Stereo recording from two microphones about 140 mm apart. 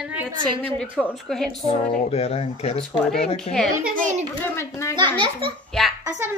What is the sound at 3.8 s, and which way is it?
Speech, 70° right (ahead or behind).